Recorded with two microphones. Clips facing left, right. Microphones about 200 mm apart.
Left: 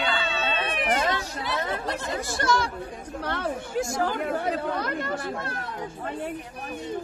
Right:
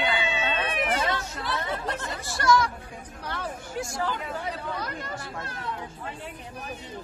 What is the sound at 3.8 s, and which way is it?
Speech, 45° left (ahead or behind).